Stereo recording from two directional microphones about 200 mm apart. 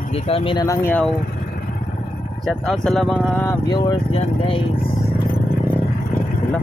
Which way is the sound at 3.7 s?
20° left (ahead or behind).